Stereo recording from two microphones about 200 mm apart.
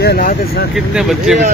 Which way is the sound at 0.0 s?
50° left (ahead or behind).